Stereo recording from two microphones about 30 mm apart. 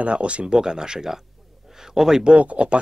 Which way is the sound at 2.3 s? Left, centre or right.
Right.